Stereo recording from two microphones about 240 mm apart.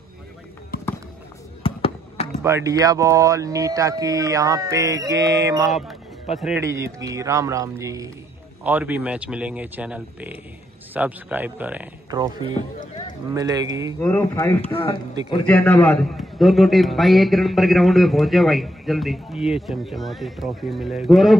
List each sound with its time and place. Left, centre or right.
1.6 s basketball bounce: left
2.4 s speech: centre
5.7 s a man's voice: centre
12.1 s speech: centre
13.9 s speech: centre
15.4 s a man's voice: centre